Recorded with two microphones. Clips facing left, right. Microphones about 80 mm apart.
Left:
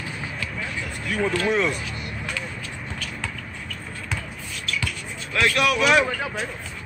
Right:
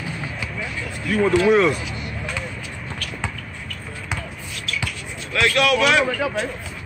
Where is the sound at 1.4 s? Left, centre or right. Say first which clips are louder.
Right 7 dB; centre.